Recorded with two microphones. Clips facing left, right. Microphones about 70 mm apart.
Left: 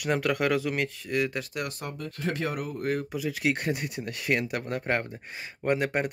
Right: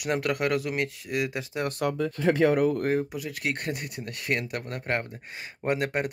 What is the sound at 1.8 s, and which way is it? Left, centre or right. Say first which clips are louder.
Speech: right 10 dB; right.